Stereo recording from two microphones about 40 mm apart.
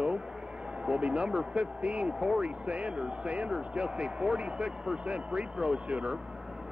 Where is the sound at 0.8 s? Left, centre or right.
Right.